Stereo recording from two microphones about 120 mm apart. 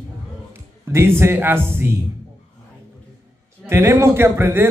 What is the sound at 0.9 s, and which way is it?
A man's voice, 20° right (ahead or behind).